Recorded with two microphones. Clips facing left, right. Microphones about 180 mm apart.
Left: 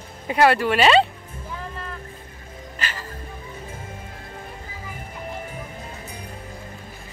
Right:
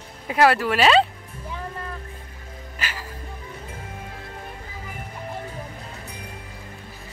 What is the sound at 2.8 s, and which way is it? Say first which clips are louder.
Music: left 1 dB; 10° right (ahead or behind).